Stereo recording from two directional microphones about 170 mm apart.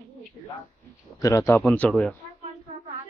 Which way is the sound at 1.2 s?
20° left (ahead or behind).